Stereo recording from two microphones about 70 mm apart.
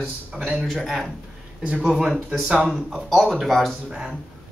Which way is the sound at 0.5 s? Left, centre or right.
Centre.